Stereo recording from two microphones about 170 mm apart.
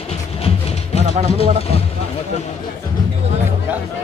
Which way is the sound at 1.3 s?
35° left (ahead or behind).